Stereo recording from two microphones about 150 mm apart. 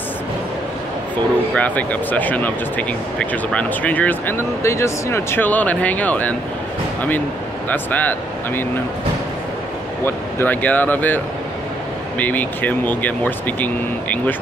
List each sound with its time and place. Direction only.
1.5 s speech: 10° left (ahead or behind)
7.7 s speech: 10° left (ahead or behind)
10.0 s speech: 10° left (ahead or behind)
12.2 s speech: 10° left (ahead or behind)